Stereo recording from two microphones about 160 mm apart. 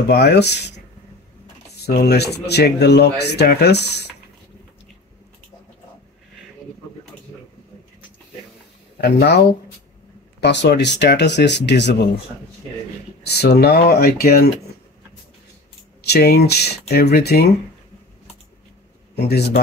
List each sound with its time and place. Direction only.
0.1 s speech: 90° left
2.0 s speech: 90° left
8.9 s speech: 85° left
10.4 s speech: 90° left
13.2 s speech: 90° left; by 14.5 s 75° left (ahead or behind)
16.1 s speech: 85° left
19.1 s a man's voice: 90° left